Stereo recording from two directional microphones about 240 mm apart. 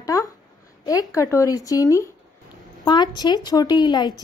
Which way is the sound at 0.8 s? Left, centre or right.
Centre.